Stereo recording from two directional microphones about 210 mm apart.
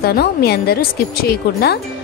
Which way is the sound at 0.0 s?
50° left (ahead or behind).